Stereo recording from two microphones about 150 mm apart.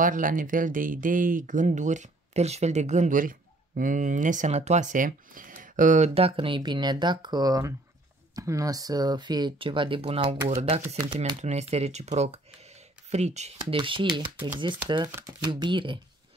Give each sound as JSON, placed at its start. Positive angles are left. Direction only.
{"t": 0.0, "sound": "speech", "side_deg": -65}
{"t": 13.7, "sound": "speech", "side_deg": -35}